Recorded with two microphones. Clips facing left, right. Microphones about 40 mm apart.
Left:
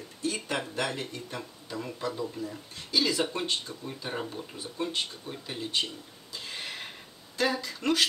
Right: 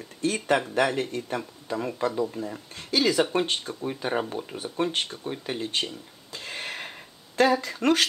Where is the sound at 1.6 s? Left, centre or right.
Right.